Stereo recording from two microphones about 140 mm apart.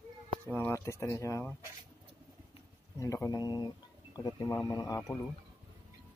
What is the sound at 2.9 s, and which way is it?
Speech, 20° left (ahead or behind).